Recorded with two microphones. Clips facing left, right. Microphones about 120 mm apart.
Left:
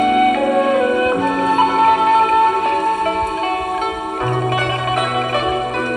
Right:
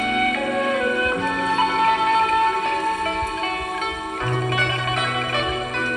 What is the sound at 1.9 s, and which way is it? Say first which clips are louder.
Music: left 6 dB; 25° left (ahead or behind).